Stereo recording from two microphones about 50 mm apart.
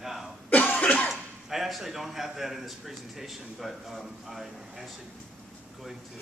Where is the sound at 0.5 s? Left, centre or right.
Left.